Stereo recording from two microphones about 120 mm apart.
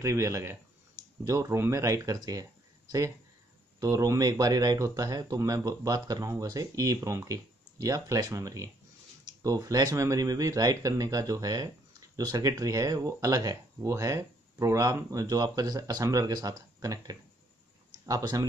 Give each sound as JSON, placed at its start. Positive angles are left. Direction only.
{"t": 0.0, "sound": "speech", "side_deg": -25}
{"t": 3.8, "sound": "speech", "side_deg": -25}